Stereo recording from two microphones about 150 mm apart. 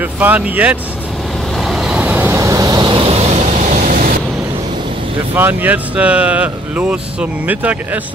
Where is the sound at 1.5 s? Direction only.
Centre (ahead or behind); by 3.0 s 25° right (ahead or behind).